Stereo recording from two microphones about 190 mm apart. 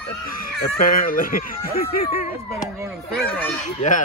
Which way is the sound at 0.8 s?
50° left (ahead or behind).